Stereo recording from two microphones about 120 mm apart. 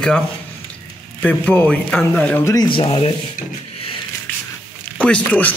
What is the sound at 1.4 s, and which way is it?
Speech, 10° left (ahead or behind).